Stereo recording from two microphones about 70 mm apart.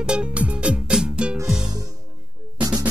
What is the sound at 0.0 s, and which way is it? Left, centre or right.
Music, centre.